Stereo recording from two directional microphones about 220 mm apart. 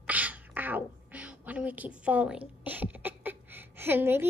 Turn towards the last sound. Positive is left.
turn(degrees=-10)  # may be behind; listen again after turning